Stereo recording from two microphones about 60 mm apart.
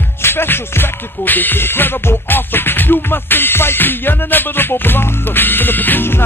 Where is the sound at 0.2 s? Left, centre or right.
Left.